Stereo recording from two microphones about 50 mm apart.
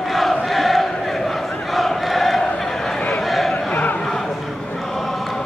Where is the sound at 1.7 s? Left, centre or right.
Centre.